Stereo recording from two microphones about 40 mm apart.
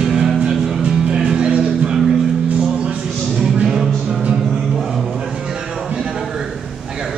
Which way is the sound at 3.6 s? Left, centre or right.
Centre.